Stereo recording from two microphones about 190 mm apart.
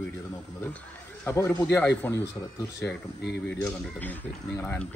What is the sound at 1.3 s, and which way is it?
Speech, 10° left (ahead or behind).